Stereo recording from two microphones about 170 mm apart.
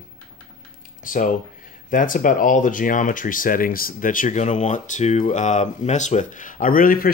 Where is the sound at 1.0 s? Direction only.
50° left (ahead or behind).